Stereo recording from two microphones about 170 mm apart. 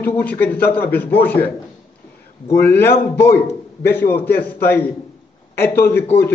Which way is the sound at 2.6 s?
15° left (ahead or behind).